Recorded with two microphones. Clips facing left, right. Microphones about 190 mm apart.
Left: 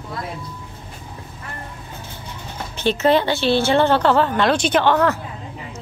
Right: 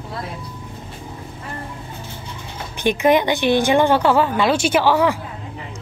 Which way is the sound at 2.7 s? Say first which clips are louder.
Right 1 dB; 15° right (ahead or behind).